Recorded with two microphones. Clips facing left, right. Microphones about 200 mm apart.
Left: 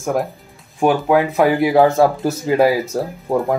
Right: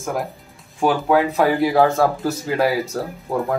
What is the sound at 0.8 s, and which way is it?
Speech, 20° left (ahead or behind).